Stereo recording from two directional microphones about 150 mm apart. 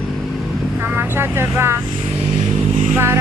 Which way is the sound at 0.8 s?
15° right (ahead or behind).